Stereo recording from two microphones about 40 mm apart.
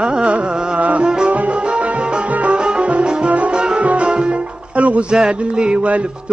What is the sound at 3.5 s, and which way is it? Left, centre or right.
Music, right.